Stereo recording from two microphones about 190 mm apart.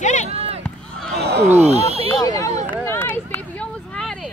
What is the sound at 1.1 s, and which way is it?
Roaring cats, 60° right (ahead or behind).